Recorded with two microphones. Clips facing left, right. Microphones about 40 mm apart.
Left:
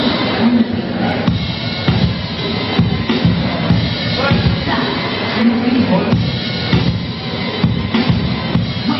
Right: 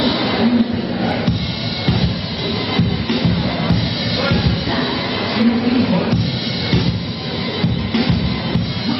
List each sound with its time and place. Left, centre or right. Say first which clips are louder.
3.1 s music: left 2 dB; centre
4.8 s a sound: left 2 dB; centre
5.6 s music: left 2 dB; centre